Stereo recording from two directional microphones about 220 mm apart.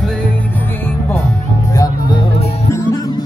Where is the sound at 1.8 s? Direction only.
20° left (ahead or behind).